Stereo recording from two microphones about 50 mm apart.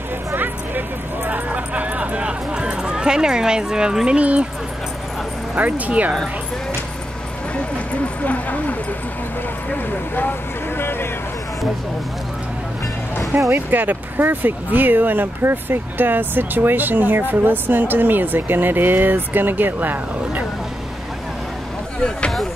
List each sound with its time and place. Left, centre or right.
0.4 s a sound: right; by 3.9 s centre
3.9 s speech: centre
4.2 s speech: right
5.6 s speech: right
7.5 s speech: left
10.8 s vehicle: left
13.3 s speech: right